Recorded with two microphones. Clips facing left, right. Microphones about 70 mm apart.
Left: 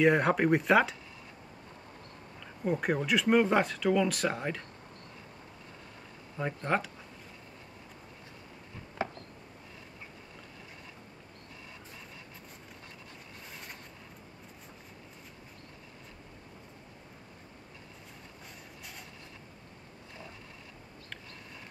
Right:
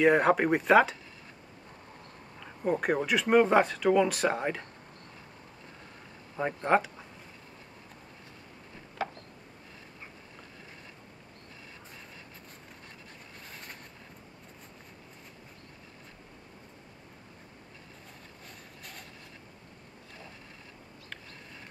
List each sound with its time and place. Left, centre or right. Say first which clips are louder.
0.0 s speech: right 2 dB; centre
2.6 s speech: right 2 dB; centre
6.3 s speech: right 5 dB; centre